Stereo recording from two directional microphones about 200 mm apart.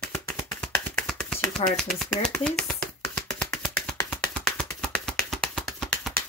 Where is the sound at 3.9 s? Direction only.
15° left (ahead or behind).